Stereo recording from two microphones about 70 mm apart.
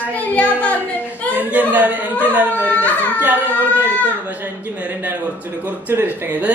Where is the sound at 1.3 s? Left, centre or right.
Right.